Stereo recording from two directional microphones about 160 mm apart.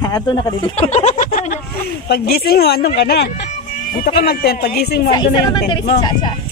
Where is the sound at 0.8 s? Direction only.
45° left (ahead or behind).